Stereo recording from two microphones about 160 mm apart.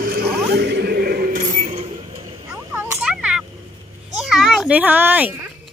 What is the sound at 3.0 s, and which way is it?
Vehicle, 5° right (ahead or behind).